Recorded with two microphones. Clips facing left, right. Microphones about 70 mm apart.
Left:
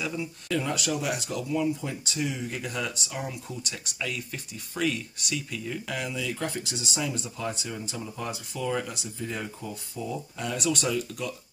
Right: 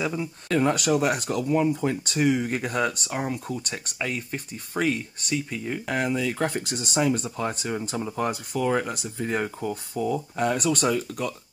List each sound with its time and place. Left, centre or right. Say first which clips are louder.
0.0 s speech: right 4 dB; right
0.5 s speech: right 7 dB; right